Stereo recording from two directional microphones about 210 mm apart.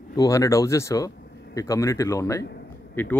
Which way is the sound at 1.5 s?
15° left (ahead or behind).